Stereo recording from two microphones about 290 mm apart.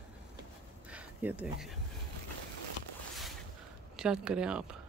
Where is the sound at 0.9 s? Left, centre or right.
Centre.